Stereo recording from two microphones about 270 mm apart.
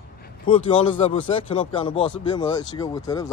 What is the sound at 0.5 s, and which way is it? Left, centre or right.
Speech, centre.